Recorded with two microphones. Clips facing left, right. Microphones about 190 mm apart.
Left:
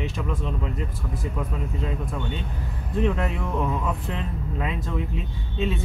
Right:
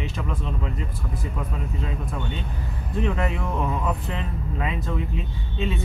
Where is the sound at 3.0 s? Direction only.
Centre (ahead or behind).